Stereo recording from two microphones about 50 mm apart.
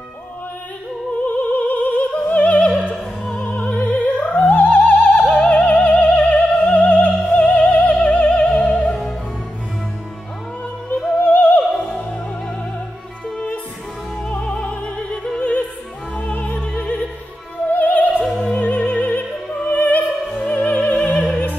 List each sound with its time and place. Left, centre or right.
1.2 s opera: left; by 8.6 s centre
11.1 s opera: left
11.7 s opera: centre
14.4 s opera: left